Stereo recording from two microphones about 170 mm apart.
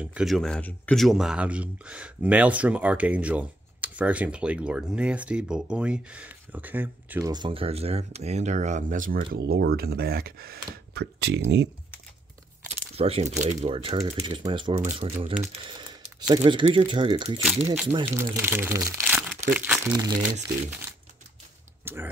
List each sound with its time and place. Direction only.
0.0 s speech: 5° right (ahead or behind); by 9.2 s 50° right (ahead or behind)
9.3 s speech: 70° right (ahead or behind)
12.6 s a sound: 35° right (ahead or behind)
13.4 s speech: 45° right (ahead or behind)
13.7 s speech: 30° right (ahead or behind)
16.2 s speech: 25° right (ahead or behind)
17.4 s speech: 5° right (ahead or behind)
21.8 s speech: 15° right (ahead or behind)